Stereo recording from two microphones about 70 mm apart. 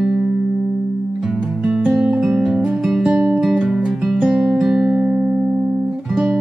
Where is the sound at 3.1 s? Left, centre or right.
Centre.